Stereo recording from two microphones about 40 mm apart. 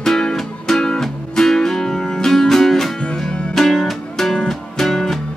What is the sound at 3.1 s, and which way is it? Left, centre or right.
Music, left.